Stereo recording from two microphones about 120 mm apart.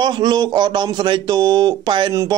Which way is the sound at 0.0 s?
35° right (ahead or behind).